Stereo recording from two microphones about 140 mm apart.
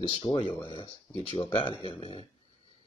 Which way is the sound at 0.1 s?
40° left (ahead or behind).